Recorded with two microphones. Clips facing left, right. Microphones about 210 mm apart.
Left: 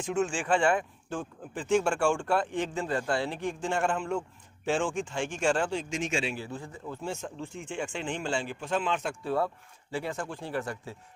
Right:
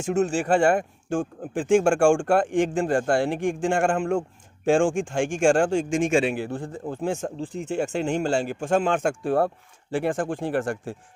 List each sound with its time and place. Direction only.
0.0 s speech: 40° right (ahead or behind)
7.3 s speech: 35° right (ahead or behind); by 11.0 s 50° right (ahead or behind)